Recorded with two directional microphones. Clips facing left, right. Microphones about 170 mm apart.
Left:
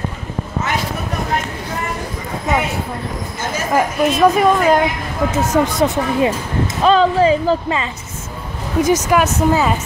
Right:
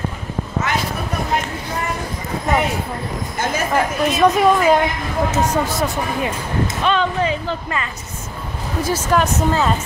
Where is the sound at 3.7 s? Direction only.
Centre (ahead or behind).